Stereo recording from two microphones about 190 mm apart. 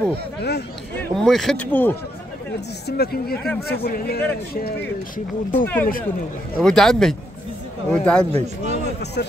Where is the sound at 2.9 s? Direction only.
55° left (ahead or behind).